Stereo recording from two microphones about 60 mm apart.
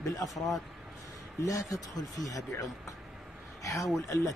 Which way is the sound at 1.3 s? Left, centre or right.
Left.